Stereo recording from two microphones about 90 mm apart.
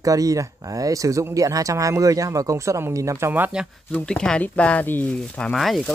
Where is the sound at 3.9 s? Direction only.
10° left (ahead or behind).